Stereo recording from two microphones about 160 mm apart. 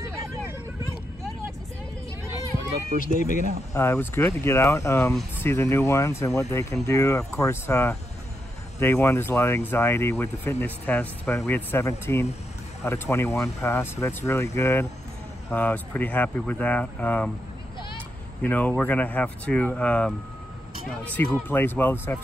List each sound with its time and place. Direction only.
0.2 s vehicle: 15° right (ahead or behind)
2.9 s speech: 60° right (ahead or behind)
3.7 s speech: 15° left (ahead or behind)
18.4 s speech: 10° left (ahead or behind)
21.5 s speech: 10° left (ahead or behind)